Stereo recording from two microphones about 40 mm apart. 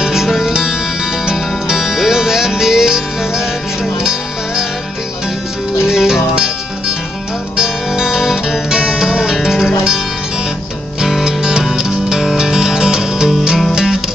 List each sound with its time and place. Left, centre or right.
0.0 s music: centre
5.9 s music: centre
7.5 s music: centre
11.2 s music: centre